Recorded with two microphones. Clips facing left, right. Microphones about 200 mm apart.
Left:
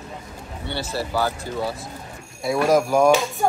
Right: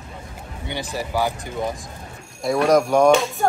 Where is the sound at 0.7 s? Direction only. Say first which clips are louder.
Even; 15° right (ahead or behind).